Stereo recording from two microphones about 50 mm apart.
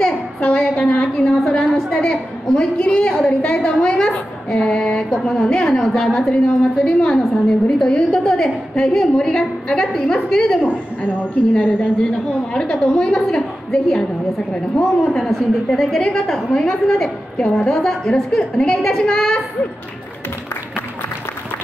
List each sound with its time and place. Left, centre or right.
0.4 s a sound: centre
1.9 s a woman's voice: centre
3.5 s a sound: centre
5.2 s a woman's voice: centre
7.0 s a woman's voice: centre
10.7 s a woman's voice: left